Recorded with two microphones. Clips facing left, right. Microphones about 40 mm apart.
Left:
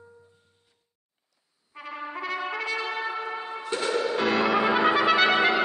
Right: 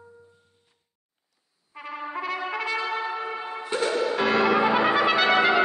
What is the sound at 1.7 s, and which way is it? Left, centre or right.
Trumpet, centre.